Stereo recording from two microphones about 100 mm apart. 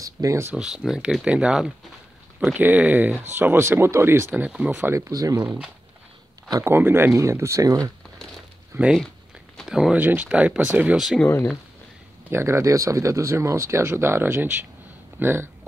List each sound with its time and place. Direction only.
0.0 s speech: 35° right (ahead or behind)
0.6 s speech: 5° right (ahead or behind)
2.4 s speech: 15° right (ahead or behind)
4.4 s speech: 15° right (ahead or behind)
4.9 s speech: 35° right (ahead or behind)
5.4 s speech: 15° right (ahead or behind)
9.7 s speech: 5° right (ahead or behind)
9.9 s speech: 15° right (ahead or behind)
12.3 s speech: 25° right (ahead or behind)